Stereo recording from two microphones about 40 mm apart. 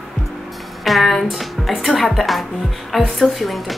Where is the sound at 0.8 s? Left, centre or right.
Centre.